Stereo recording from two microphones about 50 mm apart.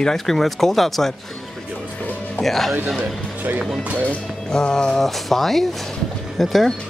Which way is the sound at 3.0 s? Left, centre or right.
Right.